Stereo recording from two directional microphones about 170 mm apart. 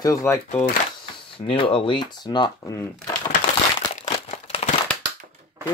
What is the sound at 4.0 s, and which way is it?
Crumpling, 35° left (ahead or behind).